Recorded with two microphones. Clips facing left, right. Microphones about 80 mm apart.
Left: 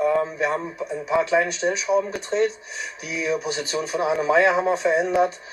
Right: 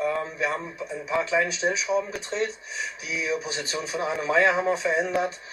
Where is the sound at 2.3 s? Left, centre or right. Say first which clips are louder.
Left 7 dB; left.